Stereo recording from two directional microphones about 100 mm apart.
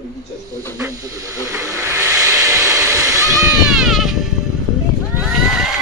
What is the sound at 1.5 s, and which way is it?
Vehicle, 30° right (ahead or behind).